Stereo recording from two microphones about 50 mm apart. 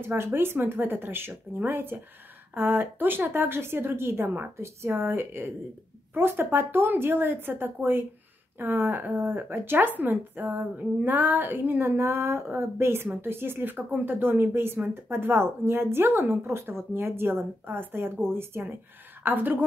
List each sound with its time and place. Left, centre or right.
0.0 s speech: right
12.0 s speech: right